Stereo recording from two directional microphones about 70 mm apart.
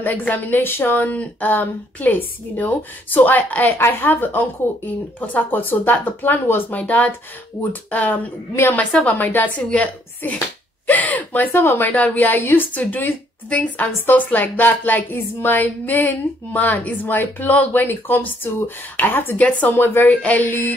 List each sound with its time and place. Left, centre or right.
0.0 s a woman's voice: left
20.2 s a woman's voice: left